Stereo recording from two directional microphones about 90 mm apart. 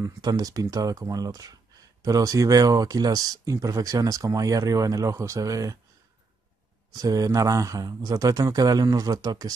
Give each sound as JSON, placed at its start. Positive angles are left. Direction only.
{"t": 0.0, "sound": "speech", "side_deg": -45}
{"t": 7.0, "sound": "speech", "side_deg": -40}